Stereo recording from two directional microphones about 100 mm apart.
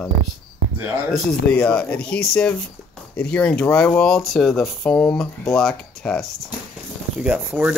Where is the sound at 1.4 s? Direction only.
10° left (ahead or behind).